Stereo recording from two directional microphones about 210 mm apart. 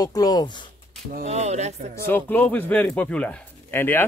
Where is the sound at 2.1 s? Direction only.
10° left (ahead or behind).